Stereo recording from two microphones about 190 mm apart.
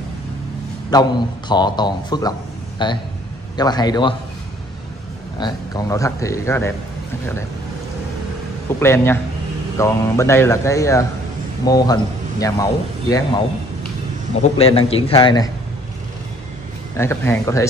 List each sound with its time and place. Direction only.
0.9 s speech: 20° left (ahead or behind)
5.4 s a man's voice: 20° left (ahead or behind)
8.7 s a man's voice: 15° left (ahead or behind)
14.6 s speech: 30° left (ahead or behind)
16.9 s a man's voice: 15° left (ahead or behind)